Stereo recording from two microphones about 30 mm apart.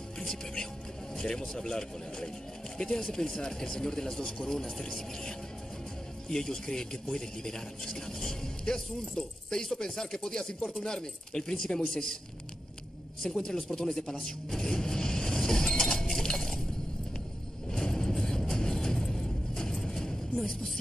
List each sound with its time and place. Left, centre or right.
1.4 s speech: centre
6.2 s speech: left
13.2 s speech: centre
14.5 s chink: left
17.6 s vehicle: left